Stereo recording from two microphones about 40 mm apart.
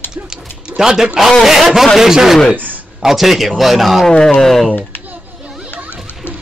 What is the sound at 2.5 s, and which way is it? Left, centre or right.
Speech, right.